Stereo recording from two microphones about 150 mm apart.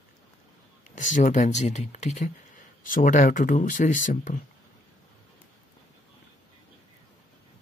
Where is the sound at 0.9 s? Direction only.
55° left (ahead or behind).